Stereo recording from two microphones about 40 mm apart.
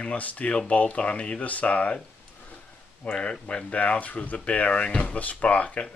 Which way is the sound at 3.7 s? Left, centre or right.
Left.